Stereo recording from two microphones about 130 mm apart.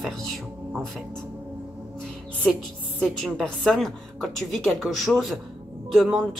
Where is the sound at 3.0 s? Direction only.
5° left (ahead or behind).